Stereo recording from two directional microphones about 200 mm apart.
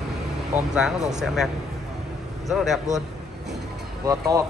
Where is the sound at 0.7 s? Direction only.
5° right (ahead or behind).